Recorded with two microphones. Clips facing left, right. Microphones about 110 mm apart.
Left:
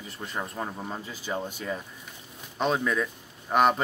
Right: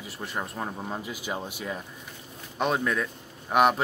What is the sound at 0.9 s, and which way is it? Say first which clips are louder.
A man's voice: even; 15° right (ahead or behind).